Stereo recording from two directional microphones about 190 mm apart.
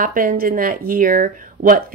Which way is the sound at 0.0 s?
45° right (ahead or behind).